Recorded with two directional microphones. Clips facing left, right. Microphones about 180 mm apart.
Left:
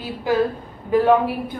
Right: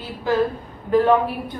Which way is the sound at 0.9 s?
10° left (ahead or behind).